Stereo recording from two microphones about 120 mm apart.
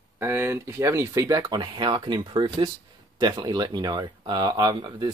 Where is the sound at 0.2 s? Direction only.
20° right (ahead or behind).